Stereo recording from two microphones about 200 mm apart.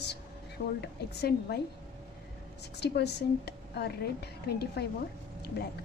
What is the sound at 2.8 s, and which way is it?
A woman's voice, 55° left (ahead or behind).